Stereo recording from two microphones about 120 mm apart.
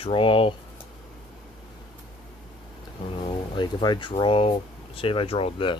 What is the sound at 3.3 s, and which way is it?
Speech, 40° left (ahead or behind).